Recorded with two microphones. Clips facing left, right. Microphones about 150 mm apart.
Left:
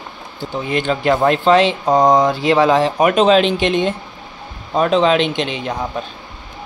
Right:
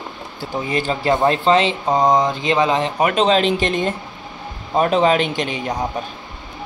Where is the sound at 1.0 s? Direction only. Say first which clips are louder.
Left 1 dB; 25° right (ahead or behind).